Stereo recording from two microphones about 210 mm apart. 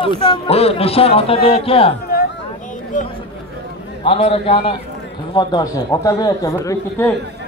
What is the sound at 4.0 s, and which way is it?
A man's voice, 25° left (ahead or behind).